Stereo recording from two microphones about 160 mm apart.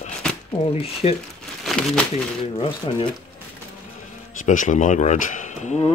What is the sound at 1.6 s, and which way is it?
Speech, centre (ahead or behind).